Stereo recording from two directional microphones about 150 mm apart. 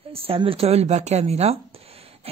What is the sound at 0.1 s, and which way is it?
Speech, 40° right (ahead or behind).